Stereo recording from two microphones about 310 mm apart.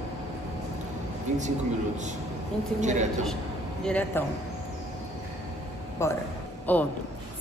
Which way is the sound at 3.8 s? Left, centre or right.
Centre.